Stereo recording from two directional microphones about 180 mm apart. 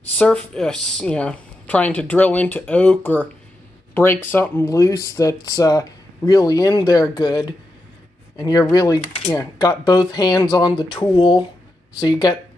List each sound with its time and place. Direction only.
0.2 s speech: 5° left (ahead or behind); by 12.4 s 20° left (ahead or behind)